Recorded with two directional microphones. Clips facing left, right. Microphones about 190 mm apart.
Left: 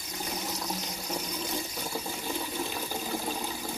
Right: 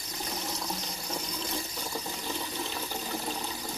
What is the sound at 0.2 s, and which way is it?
Water, 5° left (ahead or behind).